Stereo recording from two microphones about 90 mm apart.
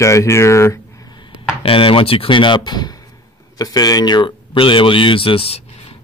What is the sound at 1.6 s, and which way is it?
Speech, 85° left.